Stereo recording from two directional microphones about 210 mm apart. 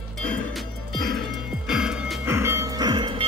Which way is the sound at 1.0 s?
Centre (ahead or behind).